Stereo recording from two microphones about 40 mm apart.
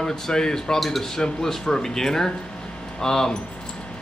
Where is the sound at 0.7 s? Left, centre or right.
Centre.